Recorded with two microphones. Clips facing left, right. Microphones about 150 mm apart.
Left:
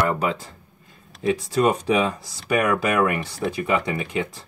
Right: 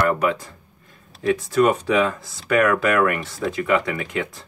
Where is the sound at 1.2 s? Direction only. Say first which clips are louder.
Right 3 dB; 20° left (ahead or behind).